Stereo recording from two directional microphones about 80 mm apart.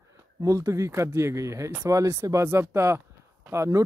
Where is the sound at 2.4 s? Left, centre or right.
Right.